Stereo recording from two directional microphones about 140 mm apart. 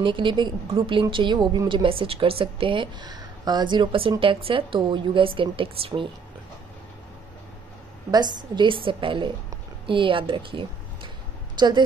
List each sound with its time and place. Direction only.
0.0 s a woman's voice: 35° right (ahead or behind)
8.1 s a woman's voice: 30° right (ahead or behind)